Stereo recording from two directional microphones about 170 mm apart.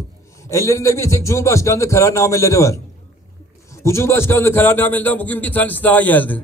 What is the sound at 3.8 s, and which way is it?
A man's voice, 15° left (ahead or behind).